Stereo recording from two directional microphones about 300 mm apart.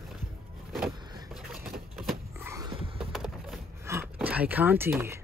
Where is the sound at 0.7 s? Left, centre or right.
Centre.